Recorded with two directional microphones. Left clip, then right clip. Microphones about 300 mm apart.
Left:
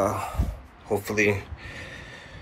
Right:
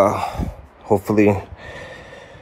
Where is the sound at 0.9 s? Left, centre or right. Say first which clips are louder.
Right 7 dB; centre.